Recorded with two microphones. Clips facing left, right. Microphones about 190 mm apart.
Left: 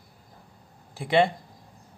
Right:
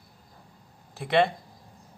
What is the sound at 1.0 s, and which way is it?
Speech, 10° left (ahead or behind).